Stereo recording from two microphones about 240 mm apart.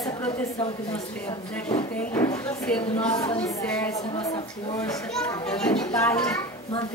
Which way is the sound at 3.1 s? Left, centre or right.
Left.